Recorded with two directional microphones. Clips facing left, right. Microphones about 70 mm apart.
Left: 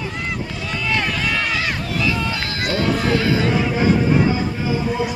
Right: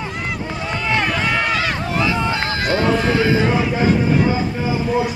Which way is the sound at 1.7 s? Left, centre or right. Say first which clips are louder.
Right 2 dB; right.